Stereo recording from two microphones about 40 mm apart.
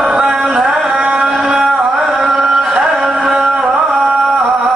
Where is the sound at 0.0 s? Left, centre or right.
Centre.